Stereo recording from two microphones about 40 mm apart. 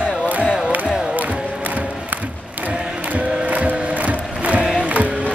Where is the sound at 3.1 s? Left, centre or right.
Right.